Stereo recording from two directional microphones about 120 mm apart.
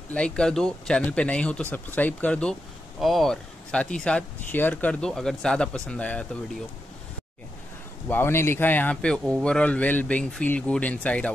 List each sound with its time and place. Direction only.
0.1 s speech: 5° left (ahead or behind)
8.1 s speech: 20° left (ahead or behind)